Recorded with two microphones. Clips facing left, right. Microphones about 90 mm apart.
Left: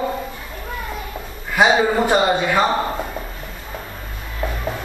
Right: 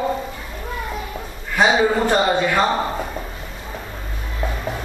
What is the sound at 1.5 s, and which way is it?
A man's voice, 5° left (ahead or behind).